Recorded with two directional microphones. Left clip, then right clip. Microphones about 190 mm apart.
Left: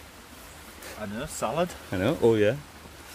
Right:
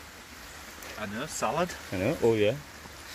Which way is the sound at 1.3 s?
30° left (ahead or behind).